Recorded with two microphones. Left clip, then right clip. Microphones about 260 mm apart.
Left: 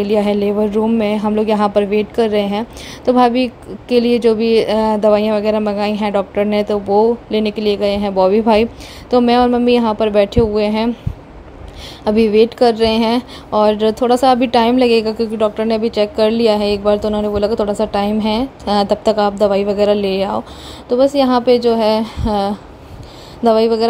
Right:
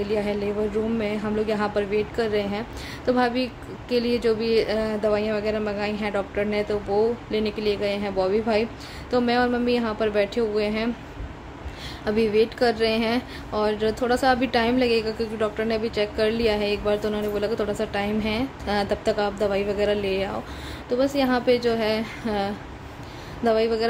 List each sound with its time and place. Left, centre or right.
0.0 s speech: left
12.0 s speech: left